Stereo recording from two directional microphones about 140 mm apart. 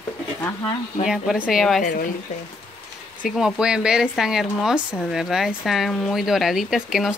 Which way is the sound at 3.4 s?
5° right (ahead or behind).